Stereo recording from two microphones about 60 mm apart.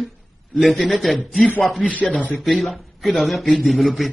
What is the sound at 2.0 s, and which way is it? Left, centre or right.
Speech, left.